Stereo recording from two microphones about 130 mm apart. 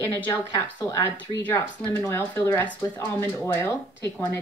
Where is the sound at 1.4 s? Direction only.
15° left (ahead or behind).